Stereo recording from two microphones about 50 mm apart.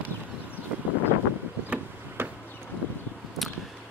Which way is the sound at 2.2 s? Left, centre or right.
Right.